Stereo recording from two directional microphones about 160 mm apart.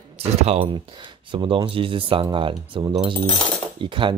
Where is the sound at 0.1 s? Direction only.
40° right (ahead or behind).